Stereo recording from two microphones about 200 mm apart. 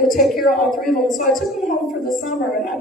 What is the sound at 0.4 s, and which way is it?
A woman's voice, 40° left (ahead or behind).